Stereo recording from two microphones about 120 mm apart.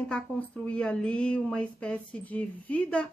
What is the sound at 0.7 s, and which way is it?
Speech, 10° left (ahead or behind).